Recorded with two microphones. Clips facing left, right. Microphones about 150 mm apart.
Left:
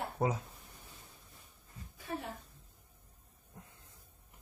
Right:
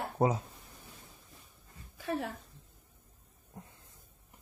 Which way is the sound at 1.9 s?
90° right.